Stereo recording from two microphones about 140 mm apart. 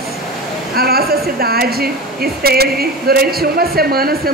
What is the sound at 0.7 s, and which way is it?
A woman's voice, 90° right.